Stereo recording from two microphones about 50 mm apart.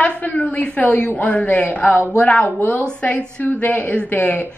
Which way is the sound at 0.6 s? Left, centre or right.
Left.